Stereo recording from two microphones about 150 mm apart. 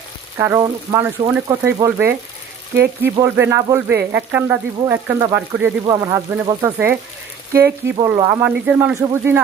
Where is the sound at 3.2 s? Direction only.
15° right (ahead or behind).